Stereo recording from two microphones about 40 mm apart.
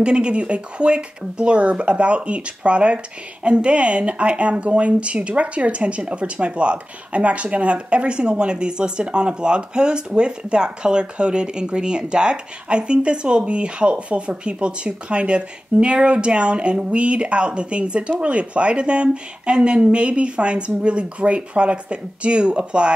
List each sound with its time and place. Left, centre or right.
0.0 s speech: right